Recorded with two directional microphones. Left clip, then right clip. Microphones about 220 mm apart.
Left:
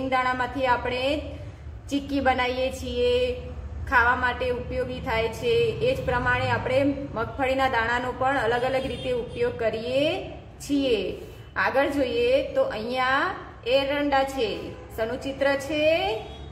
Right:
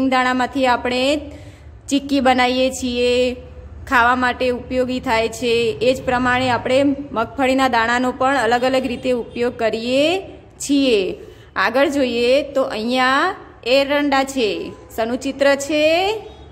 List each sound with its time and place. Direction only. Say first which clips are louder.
0.1 s a woman's voice: right 3 dB; 45° right (ahead or behind)